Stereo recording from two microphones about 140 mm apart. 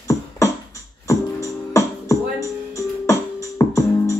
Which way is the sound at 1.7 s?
20° left (ahead or behind).